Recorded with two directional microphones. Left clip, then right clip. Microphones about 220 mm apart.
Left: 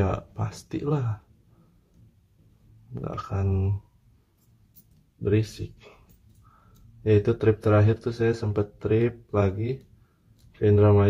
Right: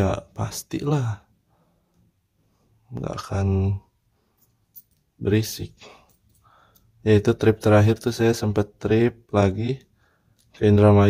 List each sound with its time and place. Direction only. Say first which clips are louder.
0.0 s speech: right 4 dB; 35° right (ahead or behind)
2.9 s speech: right 3 dB; 35° right (ahead or behind)
5.2 s speech: right 2 dB; 40° right (ahead or behind)
7.0 s speech: right 3 dB; 40° right (ahead or behind)